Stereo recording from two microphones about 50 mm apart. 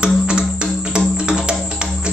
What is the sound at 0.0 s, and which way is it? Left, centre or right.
Music, centre.